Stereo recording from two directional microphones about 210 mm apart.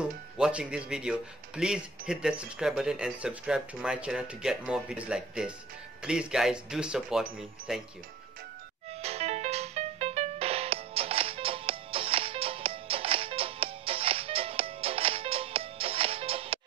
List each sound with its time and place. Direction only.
0.0 s speech: 5° right (ahead or behind)
9.0 s music: 30° right (ahead or behind)